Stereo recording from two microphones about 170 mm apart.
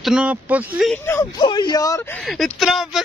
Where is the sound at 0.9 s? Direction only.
15° left (ahead or behind).